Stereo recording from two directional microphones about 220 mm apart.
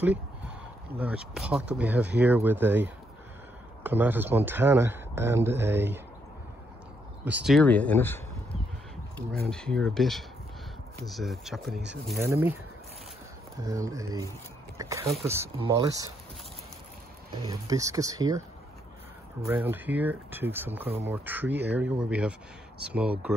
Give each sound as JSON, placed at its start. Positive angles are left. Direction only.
{"t": 0.9, "sound": "a man's voice", "side_deg": -5}
{"t": 7.2, "sound": "speech", "side_deg": -5}
{"t": 9.5, "sound": "a man's voice", "side_deg": 5}
{"t": 13.7, "sound": "a man's voice", "side_deg": -15}
{"t": 14.8, "sound": "a sound", "side_deg": -15}
{"t": 15.2, "sound": "a man's voice", "side_deg": -10}
{"t": 17.5, "sound": "a man's voice", "side_deg": -15}
{"t": 19.4, "sound": "a man's voice", "side_deg": -10}